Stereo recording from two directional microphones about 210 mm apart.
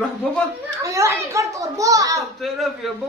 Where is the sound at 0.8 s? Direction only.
15° right (ahead or behind).